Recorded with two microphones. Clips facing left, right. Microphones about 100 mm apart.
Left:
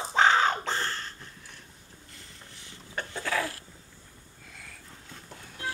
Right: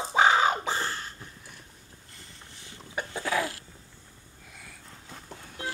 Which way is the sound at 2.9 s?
10° right (ahead or behind).